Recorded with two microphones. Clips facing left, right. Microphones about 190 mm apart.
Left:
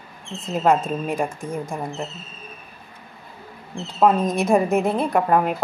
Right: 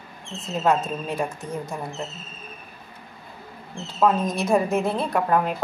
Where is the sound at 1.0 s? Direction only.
15° left (ahead or behind).